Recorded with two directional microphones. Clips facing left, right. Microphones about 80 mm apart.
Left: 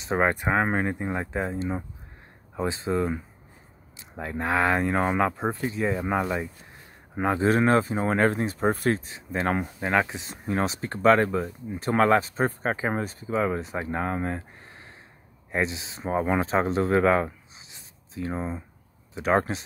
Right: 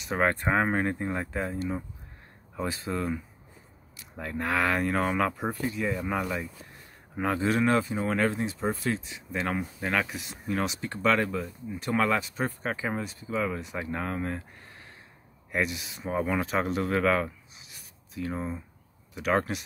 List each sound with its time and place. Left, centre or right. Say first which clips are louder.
0.0 s speech: left 3 dB; left
0.3 s speech: left 2 dB; centre
4.2 s speech: left 3 dB; left
9.8 s speech: left 4 dB; left
10.3 s speech: left 3 dB; left
15.5 s speech: left 2 dB; left